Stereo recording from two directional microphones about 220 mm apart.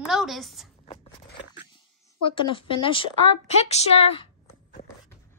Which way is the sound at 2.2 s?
25° left (ahead or behind).